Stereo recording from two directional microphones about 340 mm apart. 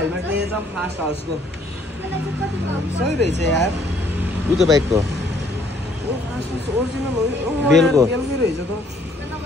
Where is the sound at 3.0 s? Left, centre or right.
Right.